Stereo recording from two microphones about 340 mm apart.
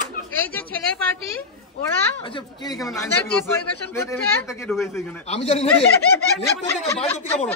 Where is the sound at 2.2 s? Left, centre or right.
Centre.